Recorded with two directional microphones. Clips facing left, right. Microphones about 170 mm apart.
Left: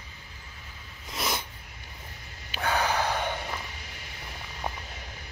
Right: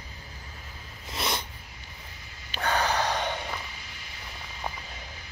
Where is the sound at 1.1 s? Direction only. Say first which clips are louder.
Even; centre (ahead or behind).